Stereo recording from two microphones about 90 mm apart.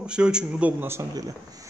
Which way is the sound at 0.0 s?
10° right (ahead or behind).